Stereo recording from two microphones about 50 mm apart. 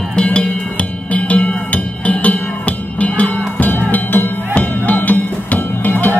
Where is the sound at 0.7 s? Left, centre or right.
Left.